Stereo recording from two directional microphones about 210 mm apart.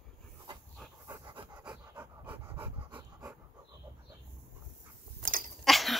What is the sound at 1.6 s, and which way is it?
Dog, 5° right (ahead or behind).